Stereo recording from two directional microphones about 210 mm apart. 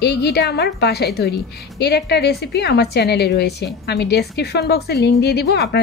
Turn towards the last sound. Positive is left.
turn(degrees=50)  # may be behind; listen again after turning